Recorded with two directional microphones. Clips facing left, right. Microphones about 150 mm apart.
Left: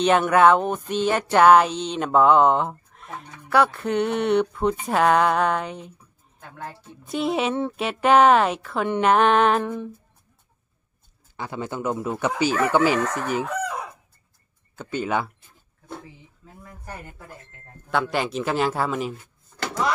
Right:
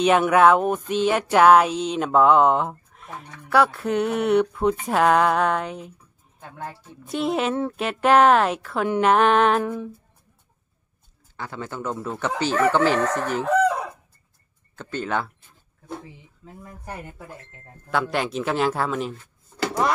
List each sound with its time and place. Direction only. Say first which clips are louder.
0.0 s a sound: even; 5° right (ahead or behind)
7.1 s a sound: even; centre (ahead or behind)
11.3 s speech: left 2 dB; 15° left (ahead or behind)
14.8 s speech: left 1 dB; 10° left (ahead or behind)
16.6 s speech: right 2 dB; 15° right (ahead or behind)
17.8 s speech: even; centre (ahead or behind)